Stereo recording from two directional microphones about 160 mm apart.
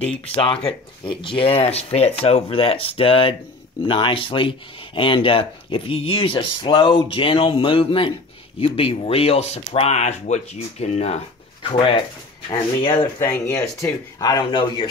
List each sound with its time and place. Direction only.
0.0 s speech: 35° left (ahead or behind)
13.2 s speech: 20° left (ahead or behind)